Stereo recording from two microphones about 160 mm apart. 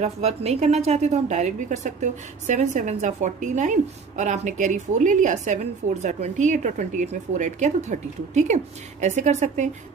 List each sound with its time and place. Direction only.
0.0 s a woman's voice: 40° right (ahead or behind)